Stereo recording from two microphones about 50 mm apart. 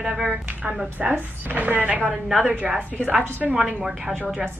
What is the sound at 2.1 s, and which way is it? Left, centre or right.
Speech, centre.